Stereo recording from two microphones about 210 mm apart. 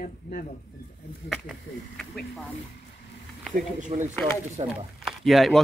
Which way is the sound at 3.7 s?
35° right (ahead or behind).